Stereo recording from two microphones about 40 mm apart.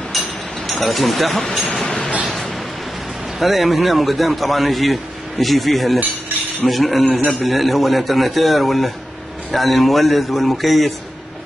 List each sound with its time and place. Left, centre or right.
0.7 s a man's voice: centre
1.7 s train: left
2.2 s a sound: centre
3.3 s a man's voice: centre
7.1 s a man's voice: right
7.4 s a man's voice: centre